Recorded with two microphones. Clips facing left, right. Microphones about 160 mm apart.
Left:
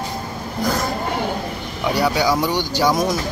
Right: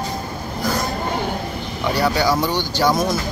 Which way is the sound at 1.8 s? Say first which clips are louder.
Even; 10° left (ahead or behind).